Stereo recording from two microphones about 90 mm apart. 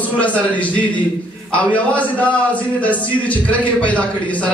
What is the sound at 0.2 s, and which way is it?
A man's voice, 15° left (ahead or behind).